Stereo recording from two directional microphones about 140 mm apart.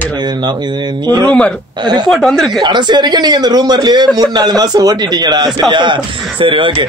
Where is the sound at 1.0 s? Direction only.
30° right (ahead or behind).